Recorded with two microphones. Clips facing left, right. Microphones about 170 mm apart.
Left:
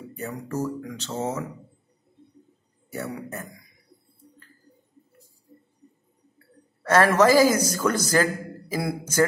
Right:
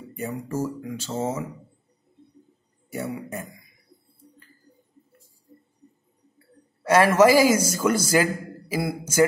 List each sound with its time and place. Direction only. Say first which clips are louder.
0.1 s a man's voice: right 2 dB; 10° right (ahead or behind)
2.9 s a man's voice: right 2 dB; 10° right (ahead or behind)
6.8 s a man's voice: right 2 dB; 10° right (ahead or behind)